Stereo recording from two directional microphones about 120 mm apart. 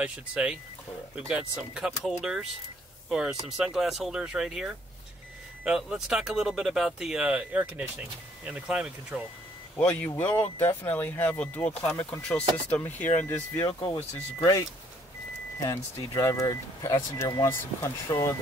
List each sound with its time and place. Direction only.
0.0 s speech: 10° right (ahead or behind)
9.8 s speech: 20° left (ahead or behind)
15.6 s speech: 30° left (ahead or behind)